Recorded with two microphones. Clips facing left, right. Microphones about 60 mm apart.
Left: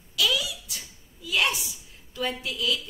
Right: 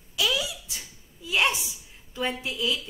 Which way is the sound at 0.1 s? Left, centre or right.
Right.